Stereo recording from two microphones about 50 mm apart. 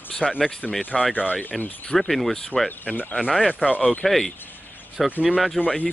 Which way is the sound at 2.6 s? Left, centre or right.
Left.